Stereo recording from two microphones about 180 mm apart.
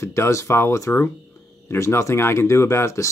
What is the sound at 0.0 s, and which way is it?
Speech, 15° left (ahead or behind).